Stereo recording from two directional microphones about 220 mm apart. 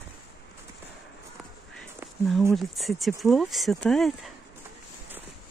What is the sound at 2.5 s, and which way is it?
Speech, centre (ahead or behind).